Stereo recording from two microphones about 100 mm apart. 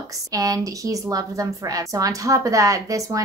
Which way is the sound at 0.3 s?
35° right (ahead or behind).